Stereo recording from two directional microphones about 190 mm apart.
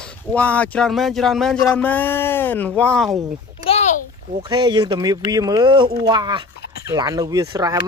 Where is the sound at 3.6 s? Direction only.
35° left (ahead or behind).